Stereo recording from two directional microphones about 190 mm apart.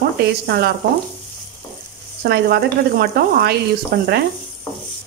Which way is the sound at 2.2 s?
55° right (ahead or behind).